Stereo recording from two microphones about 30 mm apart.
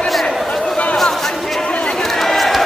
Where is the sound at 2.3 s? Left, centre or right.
Centre.